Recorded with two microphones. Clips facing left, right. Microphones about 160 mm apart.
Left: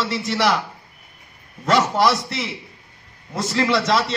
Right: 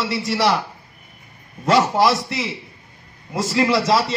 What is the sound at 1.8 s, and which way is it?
Speech, 20° right (ahead or behind).